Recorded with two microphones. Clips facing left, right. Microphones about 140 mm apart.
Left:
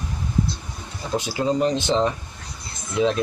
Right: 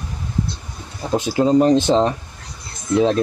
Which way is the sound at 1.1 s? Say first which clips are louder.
Right 7 dB; 45° right (ahead or behind).